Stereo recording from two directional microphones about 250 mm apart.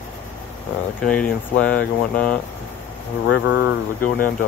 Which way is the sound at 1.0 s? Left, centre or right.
Centre.